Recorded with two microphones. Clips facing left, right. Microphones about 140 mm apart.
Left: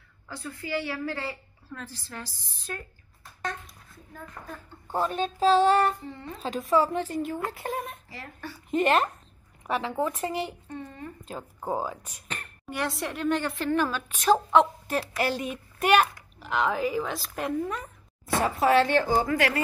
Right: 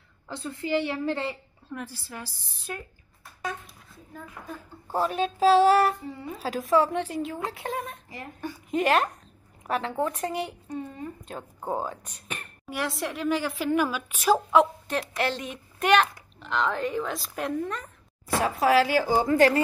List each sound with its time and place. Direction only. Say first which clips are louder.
0.3 s a woman's voice: right 5 dB; 25° right (ahead or behind); by 7.9 s centre (ahead or behind)
8.1 s speech: right 4 dB; 15° right (ahead or behind)
8.6 s speech: even; centre (ahead or behind)
10.7 s a sound: right 4 dB; 10° right (ahead or behind)
11.2 s a woman's voice: left 2 dB; centre (ahead or behind)
19.2 s speech: right 6 dB; 35° right (ahead or behind)